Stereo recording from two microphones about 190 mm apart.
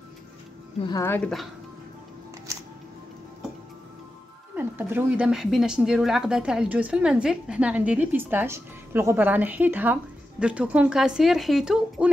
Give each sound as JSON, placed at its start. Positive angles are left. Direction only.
{"t": 0.7, "sound": "speech", "side_deg": 25}
{"t": 1.0, "sound": "speech", "side_deg": 10}
{"t": 4.6, "sound": "a woman's voice", "side_deg": -10}